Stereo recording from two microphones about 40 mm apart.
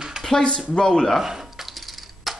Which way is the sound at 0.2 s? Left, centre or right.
Centre.